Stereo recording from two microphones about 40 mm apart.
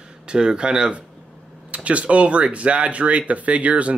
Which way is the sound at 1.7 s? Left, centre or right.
Right.